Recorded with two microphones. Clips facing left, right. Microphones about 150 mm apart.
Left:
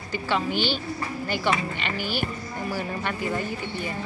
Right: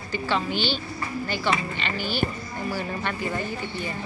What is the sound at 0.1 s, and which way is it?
Speech, 10° left (ahead or behind).